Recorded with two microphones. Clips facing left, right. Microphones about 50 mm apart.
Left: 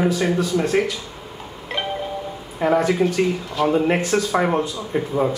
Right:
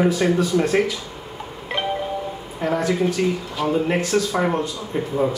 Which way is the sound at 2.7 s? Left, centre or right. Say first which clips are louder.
Left 1 dB; centre.